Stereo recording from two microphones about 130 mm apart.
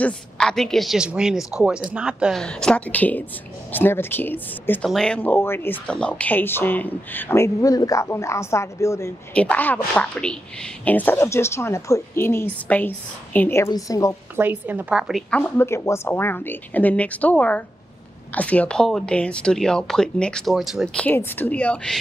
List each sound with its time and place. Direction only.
0.0 s a woman's voice: 5° left (ahead or behind)
2.4 s speech: 5° left (ahead or behind)
4.8 s speech: 5° left (ahead or behind); by 9.1 s 20° left (ahead or behind)
9.3 s speech: 10° left (ahead or behind)
13.7 s speech: 25° left (ahead or behind)
14.3 s a woman's voice: 15° right (ahead or behind)
15.3 s speech: 15° left (ahead or behind)